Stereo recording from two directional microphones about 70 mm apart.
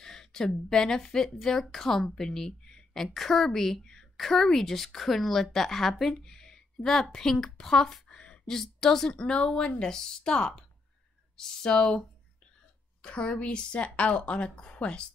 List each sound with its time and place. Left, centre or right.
0.0 s a woman's voice: centre